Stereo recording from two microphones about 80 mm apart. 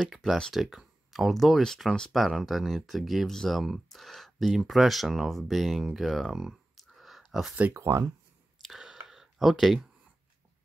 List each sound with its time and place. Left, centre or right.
0.0 s speech: centre
5.9 s a sound: centre
7.7 s speech: right
8.6 s clicking: centre